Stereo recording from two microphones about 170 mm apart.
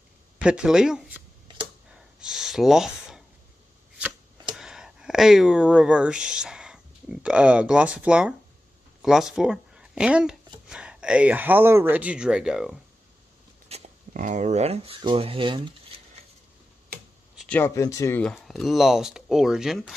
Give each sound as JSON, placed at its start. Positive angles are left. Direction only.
{"t": 0.4, "sound": "speech", "side_deg": -5}
{"t": 2.1, "sound": "a sound", "side_deg": -5}
{"t": 4.6, "sound": "speech", "side_deg": -5}
{"t": 13.7, "sound": "speech", "side_deg": -40}
{"t": 17.4, "sound": "speech", "side_deg": 10}
{"t": 18.2, "sound": "speech", "side_deg": 0}